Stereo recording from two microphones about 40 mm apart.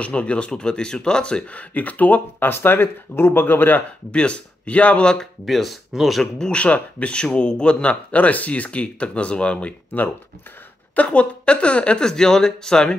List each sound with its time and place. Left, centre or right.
0.0 s speech: left
1.5 s speech: left
2.5 s speech: left
4.1 s speech: left
5.2 s speech: centre
6.5 s speech: left
11.0 s speech: left
12.0 s speech: centre